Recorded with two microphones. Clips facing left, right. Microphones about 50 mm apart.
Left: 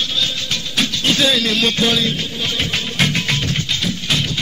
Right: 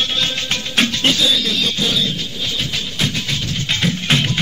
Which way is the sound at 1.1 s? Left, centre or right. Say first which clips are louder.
Left 2 dB; left.